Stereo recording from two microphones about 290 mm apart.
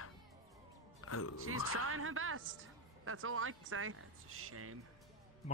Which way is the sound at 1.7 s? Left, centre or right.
Right.